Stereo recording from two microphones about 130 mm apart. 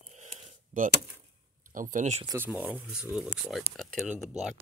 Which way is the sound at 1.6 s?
90° right.